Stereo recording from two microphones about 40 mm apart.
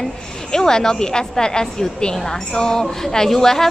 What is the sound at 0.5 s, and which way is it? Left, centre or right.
A woman's voice, centre.